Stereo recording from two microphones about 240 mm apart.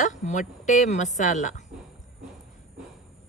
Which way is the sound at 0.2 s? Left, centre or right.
Left.